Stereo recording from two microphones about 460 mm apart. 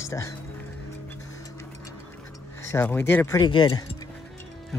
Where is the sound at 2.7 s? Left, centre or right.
Centre.